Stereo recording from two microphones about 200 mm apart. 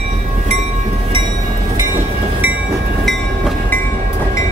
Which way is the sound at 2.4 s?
10° right (ahead or behind).